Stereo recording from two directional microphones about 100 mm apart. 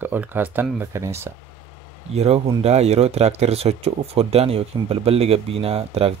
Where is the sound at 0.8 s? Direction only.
30° right (ahead or behind).